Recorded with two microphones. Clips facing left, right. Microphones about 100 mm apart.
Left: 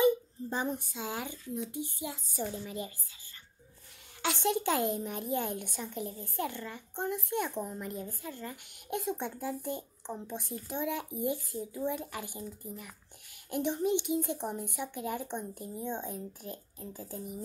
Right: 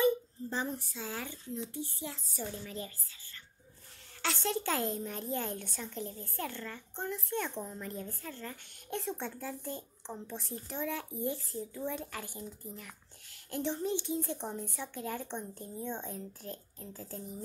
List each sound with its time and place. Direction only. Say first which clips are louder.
0.0 s a child's voice: left 2 dB; 15° left (ahead or behind)
4.2 s speech: left 4 dB; 15° left (ahead or behind)